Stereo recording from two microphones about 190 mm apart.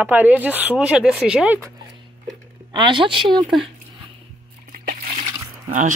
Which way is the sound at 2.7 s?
25° right (ahead or behind).